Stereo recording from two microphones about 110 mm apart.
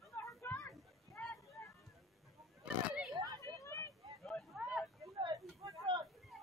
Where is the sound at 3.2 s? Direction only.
40° right (ahead or behind).